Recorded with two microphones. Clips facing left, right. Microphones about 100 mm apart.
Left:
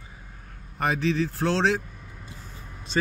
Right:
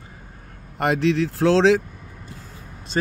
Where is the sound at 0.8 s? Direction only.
80° right.